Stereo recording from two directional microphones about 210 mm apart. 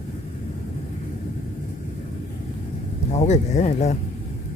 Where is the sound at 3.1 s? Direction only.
35° left (ahead or behind).